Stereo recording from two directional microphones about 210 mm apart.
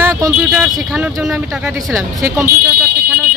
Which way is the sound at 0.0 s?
10° right (ahead or behind).